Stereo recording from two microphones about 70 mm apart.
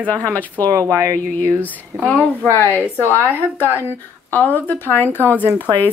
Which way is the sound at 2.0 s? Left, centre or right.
Left.